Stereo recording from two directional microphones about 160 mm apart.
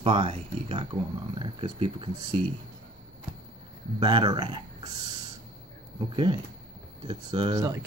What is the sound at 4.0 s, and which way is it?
Speech, 30° right (ahead or behind).